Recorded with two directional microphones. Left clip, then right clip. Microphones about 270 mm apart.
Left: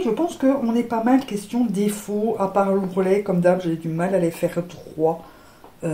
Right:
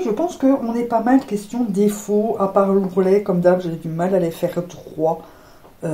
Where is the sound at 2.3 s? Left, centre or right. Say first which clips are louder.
Right 2 dB; left.